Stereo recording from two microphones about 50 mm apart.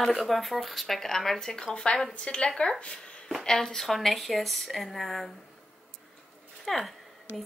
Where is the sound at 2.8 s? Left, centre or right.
Left.